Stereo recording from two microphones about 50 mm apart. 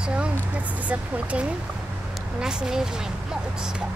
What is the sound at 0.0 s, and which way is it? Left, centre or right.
Vehicle, right.